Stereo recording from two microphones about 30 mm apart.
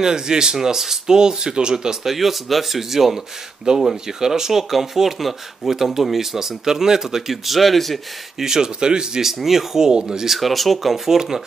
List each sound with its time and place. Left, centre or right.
0.0 s speech: right
2.0 s speech: centre
3.7 s speech: right
4.2 s speech: centre
8.4 s speech: centre
9.2 s speech: centre
9.8 s speech: right
10.2 s speech: centre
11.1 s speech: centre